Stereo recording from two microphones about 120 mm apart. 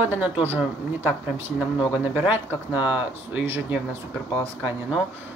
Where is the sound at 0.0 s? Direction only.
15° right (ahead or behind).